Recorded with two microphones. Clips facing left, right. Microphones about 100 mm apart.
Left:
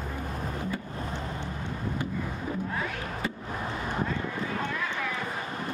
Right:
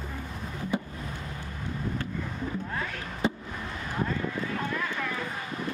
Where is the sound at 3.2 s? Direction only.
25° right (ahead or behind).